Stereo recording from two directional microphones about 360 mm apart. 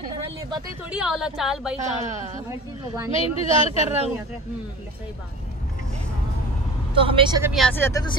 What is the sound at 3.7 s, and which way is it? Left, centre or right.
Speech, centre.